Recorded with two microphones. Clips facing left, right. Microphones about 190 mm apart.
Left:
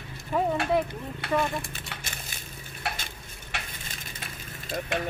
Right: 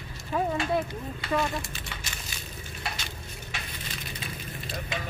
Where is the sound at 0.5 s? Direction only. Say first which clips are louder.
Left 2 dB; 65° left (ahead or behind).